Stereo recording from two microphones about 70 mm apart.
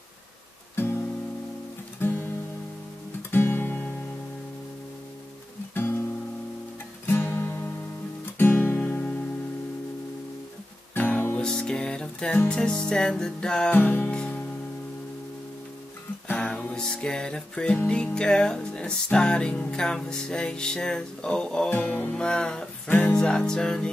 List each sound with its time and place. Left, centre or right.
2.0 s music: left
7.1 s music: left
11.0 s music: left
11.3 s music: centre
13.7 s music: left
16.3 s music: centre
21.6 s music: left
22.1 s music: centre